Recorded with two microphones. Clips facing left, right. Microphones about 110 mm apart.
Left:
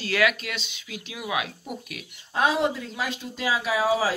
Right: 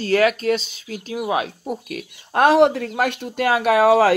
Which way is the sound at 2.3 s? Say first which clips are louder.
Right 9 dB; 65° right (ahead or behind).